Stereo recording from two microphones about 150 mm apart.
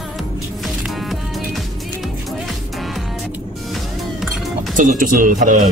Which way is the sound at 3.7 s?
Centre (ahead or behind).